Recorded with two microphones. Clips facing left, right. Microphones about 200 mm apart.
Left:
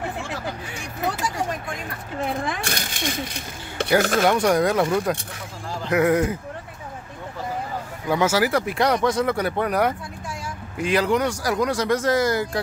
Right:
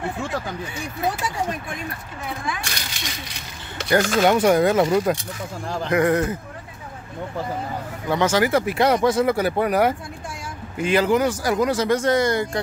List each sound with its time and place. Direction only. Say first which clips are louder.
2.5 s speech: left 4 dB; 55° left (ahead or behind)
4.2 s speech: right 2 dB; 5° right (ahead or behind)
8.1 s speech: right 1 dB; 10° left (ahead or behind)